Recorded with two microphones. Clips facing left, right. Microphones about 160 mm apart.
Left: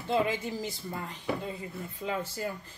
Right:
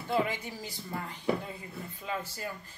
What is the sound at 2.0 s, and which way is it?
Speech, 25° left (ahead or behind).